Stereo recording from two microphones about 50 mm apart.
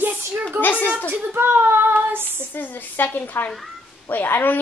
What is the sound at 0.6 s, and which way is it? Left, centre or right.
Speech, left.